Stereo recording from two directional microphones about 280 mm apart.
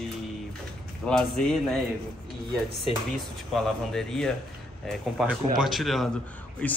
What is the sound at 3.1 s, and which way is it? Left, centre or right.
Speech, centre.